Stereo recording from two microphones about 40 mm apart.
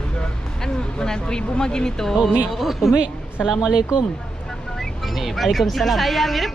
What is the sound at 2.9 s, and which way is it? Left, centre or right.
A woman's voice, centre.